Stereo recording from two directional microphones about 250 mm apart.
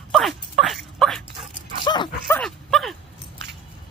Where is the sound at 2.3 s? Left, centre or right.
Centre.